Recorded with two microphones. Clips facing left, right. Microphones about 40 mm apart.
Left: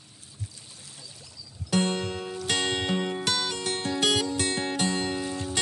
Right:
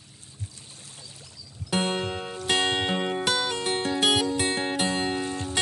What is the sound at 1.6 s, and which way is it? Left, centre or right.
Music, right.